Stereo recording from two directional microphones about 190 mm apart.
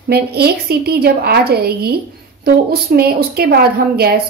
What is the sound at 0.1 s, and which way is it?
A woman's voice, 55° right (ahead or behind).